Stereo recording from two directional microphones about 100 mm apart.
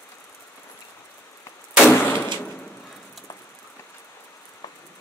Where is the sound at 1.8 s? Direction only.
20° left (ahead or behind).